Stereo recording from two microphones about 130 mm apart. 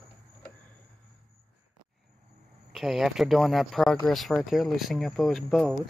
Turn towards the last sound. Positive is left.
turn(degrees=0)  # may be behind; listen again after turning